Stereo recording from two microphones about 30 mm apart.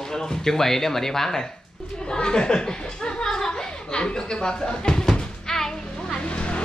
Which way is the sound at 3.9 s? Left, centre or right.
Left.